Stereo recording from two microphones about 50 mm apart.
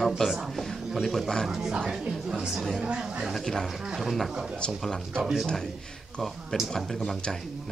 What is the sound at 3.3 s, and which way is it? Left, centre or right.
Speech, centre.